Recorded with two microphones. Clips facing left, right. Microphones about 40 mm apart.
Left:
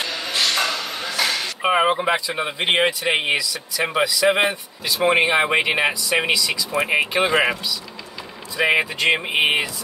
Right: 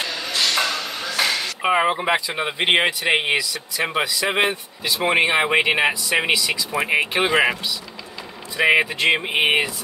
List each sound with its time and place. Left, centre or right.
0.0 s a sound: centre
0.6 s chop: centre
2.0 s speech: centre
6.5 s speech: centre
8.6 s speech: centre